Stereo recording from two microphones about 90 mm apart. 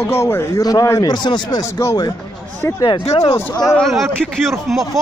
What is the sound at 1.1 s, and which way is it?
Speech, 55° left (ahead or behind).